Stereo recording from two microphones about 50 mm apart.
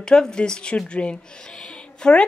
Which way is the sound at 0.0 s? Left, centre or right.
Centre.